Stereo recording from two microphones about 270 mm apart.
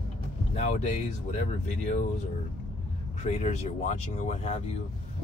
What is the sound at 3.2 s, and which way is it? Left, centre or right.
Speech, left.